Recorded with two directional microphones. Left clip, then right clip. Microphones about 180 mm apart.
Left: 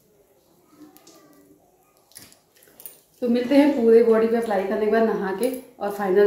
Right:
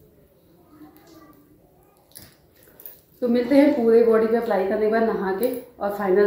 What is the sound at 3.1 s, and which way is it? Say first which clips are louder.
A woman's voice: right 1 dB; 15° left (ahead or behind).